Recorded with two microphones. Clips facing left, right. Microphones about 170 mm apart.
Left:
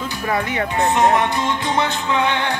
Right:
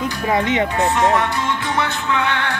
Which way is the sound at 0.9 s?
20° left (ahead or behind).